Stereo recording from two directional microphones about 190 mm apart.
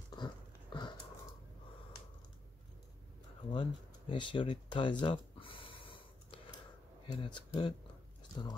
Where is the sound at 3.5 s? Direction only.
25° left (ahead or behind).